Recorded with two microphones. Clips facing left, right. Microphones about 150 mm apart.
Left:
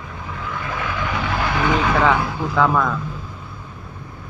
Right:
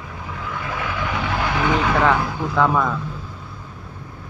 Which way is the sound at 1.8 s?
Centre (ahead or behind).